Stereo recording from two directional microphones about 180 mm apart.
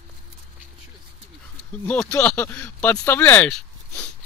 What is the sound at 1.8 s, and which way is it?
Speech, 5° left (ahead or behind).